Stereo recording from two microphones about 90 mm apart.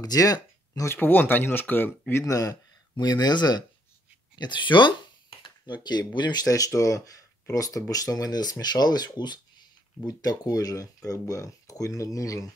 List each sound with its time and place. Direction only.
0.0 s a sound: 45° left (ahead or behind)
0.8 s speech: 20° left (ahead or behind)
2.2 s speech: 40° left (ahead or behind)
3.0 s speech: 50° left (ahead or behind)
5.4 s a sound: 55° left (ahead or behind)
6.1 s speech: 55° left (ahead or behind)
6.4 s speech: 40° left (ahead or behind)